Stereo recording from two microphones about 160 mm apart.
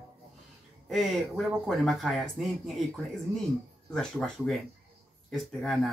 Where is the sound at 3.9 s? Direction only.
5° left (ahead or behind).